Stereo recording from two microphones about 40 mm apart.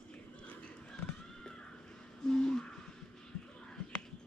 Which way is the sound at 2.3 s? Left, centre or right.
Centre.